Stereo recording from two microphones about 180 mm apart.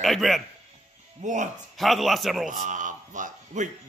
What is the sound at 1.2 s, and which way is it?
Music, 45° right (ahead or behind).